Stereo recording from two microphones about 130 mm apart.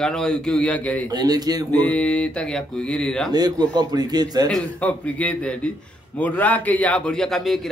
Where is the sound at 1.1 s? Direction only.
30° right (ahead or behind).